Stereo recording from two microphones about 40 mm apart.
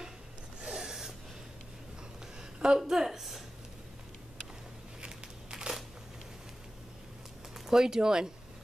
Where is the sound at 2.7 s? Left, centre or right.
Centre.